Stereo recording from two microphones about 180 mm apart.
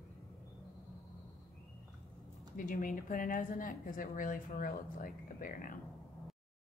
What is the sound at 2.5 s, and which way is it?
A woman's voice, 50° left (ahead or behind).